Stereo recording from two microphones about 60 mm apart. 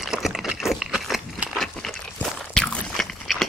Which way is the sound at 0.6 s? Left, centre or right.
Centre.